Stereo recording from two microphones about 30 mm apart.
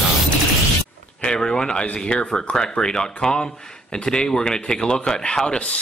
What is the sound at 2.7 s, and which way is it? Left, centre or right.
Speech, left.